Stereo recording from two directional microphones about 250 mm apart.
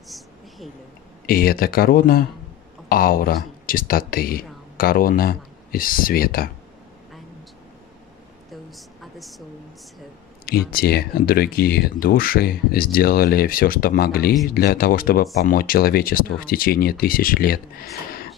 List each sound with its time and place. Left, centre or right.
1.2 s speech: left
8.6 s a sound: centre
10.7 s speech: left